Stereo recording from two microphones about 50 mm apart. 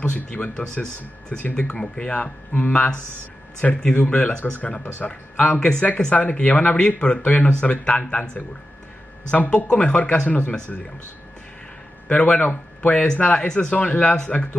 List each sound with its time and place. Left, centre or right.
0.0 s speech: left
1.5 s speech: centre
2.5 s speech: left
3.9 s speech: left
5.6 s speech: centre
6.1 s speech: left
12.1 s speech: left
12.4 s speech: left
12.9 s speech: centre